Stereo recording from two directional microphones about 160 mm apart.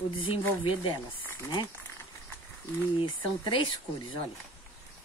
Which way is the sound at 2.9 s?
30° left (ahead or behind).